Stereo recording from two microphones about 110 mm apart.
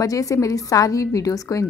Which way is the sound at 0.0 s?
30° left (ahead or behind).